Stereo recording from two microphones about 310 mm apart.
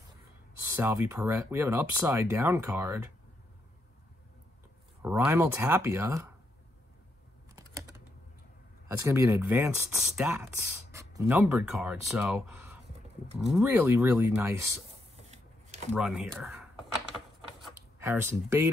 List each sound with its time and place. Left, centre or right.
0.7 s speech: centre
5.0 s speech: centre
9.0 s speech: centre
14.9 s a sound: right
16.0 s speech: centre
17.6 s speech: centre